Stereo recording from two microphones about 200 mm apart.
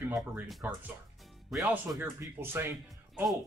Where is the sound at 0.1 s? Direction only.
Centre (ahead or behind).